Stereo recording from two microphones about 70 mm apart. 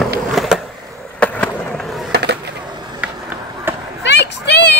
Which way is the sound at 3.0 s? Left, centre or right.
Centre.